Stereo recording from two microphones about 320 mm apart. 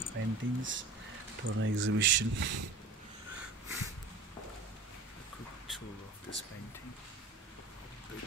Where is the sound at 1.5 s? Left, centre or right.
Right.